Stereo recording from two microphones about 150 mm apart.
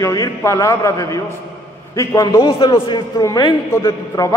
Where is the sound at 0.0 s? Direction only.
20° left (ahead or behind).